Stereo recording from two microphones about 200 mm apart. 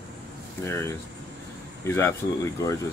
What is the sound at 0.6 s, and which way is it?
Speech, 15° left (ahead or behind).